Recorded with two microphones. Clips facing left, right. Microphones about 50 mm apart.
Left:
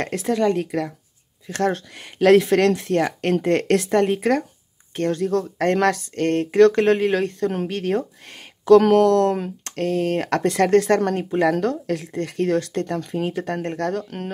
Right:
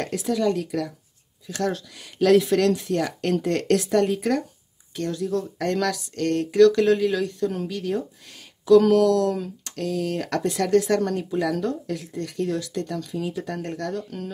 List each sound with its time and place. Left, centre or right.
0.0 s speech: left